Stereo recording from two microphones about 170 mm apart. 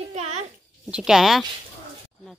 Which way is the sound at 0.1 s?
40° right (ahead or behind).